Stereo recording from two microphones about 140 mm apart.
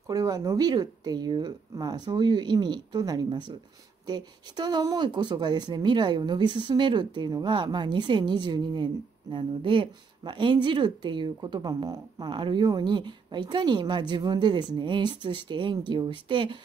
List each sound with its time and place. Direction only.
0.1 s speech: 25° right (ahead or behind)